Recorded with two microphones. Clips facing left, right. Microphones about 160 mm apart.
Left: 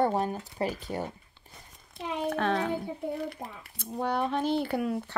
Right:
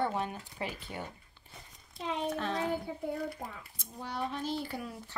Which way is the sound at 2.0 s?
65° left (ahead or behind).